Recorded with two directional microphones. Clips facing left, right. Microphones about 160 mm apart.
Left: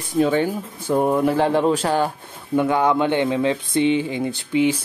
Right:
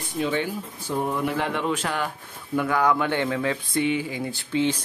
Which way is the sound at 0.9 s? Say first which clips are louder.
Left 8 dB; 55° left (ahead or behind).